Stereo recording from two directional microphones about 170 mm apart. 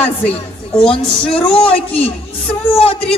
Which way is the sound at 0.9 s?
35° left (ahead or behind).